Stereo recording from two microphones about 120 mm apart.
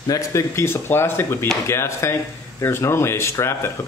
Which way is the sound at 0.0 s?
30° left (ahead or behind).